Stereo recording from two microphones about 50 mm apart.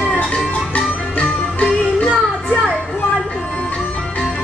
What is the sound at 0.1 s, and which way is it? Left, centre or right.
Music, left.